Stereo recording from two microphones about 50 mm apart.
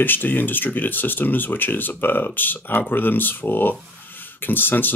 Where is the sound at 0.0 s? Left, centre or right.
Left.